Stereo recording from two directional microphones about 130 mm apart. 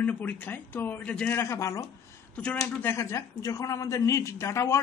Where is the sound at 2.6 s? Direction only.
20° left (ahead or behind).